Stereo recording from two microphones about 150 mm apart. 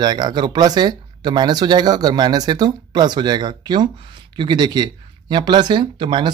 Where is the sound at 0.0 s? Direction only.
30° right (ahead or behind).